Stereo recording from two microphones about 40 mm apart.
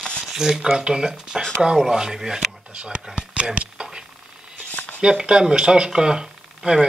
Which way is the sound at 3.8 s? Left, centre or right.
Right.